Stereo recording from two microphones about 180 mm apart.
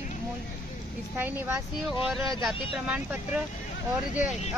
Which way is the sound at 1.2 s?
10° right (ahead or behind).